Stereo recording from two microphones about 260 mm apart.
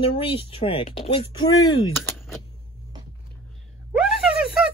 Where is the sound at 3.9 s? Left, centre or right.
Centre.